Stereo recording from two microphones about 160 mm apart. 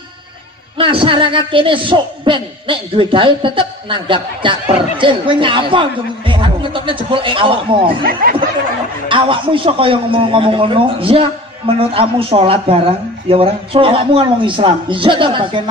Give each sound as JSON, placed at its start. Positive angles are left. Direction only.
{"t": 0.7, "sound": "a man's voice", "side_deg": -30}
{"t": 8.0, "sound": "speech", "side_deg": -65}
{"t": 9.1, "sound": "a man's voice", "side_deg": -30}